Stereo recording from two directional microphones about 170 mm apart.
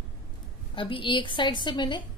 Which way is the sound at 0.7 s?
30° left (ahead or behind).